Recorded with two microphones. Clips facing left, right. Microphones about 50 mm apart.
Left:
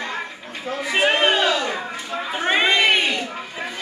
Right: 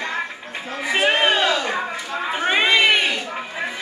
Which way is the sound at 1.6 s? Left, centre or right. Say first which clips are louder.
Right 2 dB; centre.